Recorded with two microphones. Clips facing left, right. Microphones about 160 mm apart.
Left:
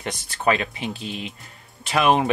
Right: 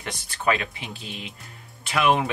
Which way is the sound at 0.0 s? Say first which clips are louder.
Left 3 dB; 35° left (ahead or behind).